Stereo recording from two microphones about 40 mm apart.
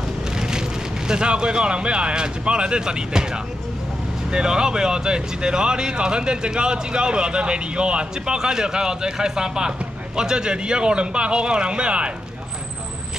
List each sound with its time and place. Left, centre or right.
0.4 s speech: centre